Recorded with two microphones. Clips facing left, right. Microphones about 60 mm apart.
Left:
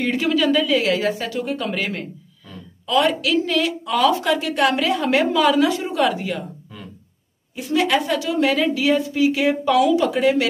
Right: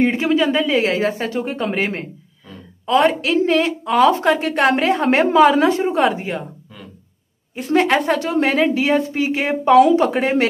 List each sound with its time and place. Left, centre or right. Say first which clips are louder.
0.0 s a woman's voice: right 3 dB; right
7.5 s a woman's voice: right 3 dB; right